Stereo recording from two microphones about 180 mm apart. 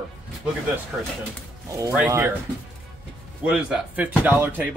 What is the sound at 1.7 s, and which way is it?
Speech, 15° right (ahead or behind).